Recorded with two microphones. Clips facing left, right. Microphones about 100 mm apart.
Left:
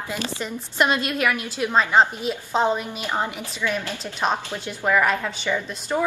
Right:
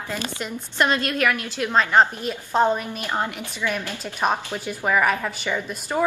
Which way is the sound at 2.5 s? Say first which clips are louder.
Right 2 dB; centre (ahead or behind).